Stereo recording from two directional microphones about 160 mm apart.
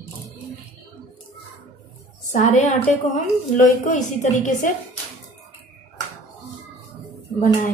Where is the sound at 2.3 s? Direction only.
50° left (ahead or behind).